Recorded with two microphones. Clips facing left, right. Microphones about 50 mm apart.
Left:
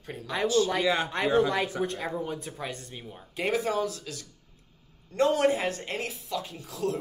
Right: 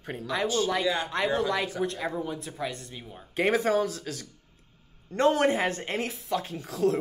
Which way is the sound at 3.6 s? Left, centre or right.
Right.